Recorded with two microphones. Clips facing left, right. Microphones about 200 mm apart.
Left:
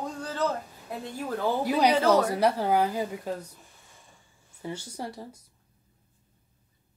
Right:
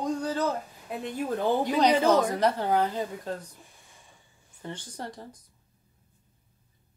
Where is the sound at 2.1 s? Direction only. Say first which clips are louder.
Left 1 dB; 10° left (ahead or behind).